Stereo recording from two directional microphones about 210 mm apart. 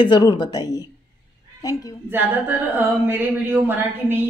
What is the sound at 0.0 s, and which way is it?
Speech, 20° left (ahead or behind).